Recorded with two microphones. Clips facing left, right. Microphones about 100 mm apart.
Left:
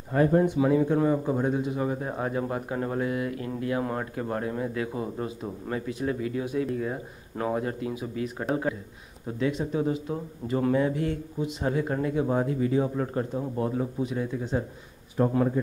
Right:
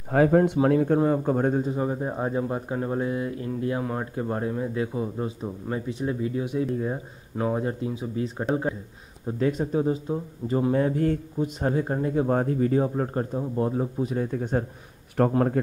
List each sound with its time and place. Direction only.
0.1 s speech: 90° right
1.0 s speech: 45° right (ahead or behind); by 3.0 s 10° right (ahead or behind)
3.0 s speech: 25° right (ahead or behind)
9.4 s speech: 40° right (ahead or behind)
14.0 s speech: 40° right (ahead or behind)
15.2 s a man's voice: 70° right (ahead or behind)